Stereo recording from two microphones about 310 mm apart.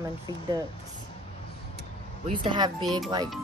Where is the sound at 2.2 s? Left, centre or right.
Centre.